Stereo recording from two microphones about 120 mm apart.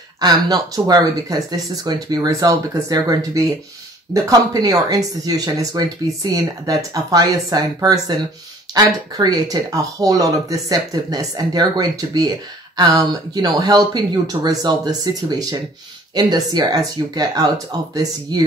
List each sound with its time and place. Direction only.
0.2 s speech: 35° right (ahead or behind)